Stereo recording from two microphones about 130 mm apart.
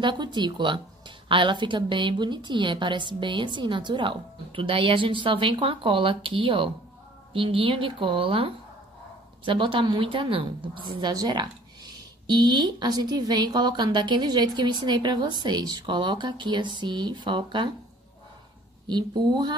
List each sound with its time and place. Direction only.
0.0 s a woman's voice: 35° right (ahead or behind)
18.9 s a woman's voice: 35° right (ahead or behind)